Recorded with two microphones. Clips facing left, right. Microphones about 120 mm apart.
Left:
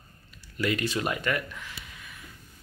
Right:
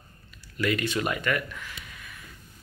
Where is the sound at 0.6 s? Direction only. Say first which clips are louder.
Right 1 dB; 35° left (ahead or behind).